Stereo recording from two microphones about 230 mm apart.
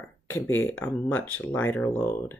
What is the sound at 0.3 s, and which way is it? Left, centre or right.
Speech, centre.